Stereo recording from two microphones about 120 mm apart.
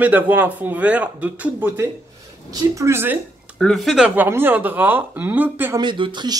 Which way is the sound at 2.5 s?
25° right (ahead or behind).